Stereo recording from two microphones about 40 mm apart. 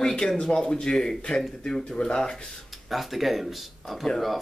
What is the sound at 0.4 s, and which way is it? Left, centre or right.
Speech, centre.